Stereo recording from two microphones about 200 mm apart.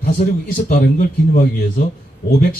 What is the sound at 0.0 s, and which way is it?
A man's voice, 45° left (ahead or behind).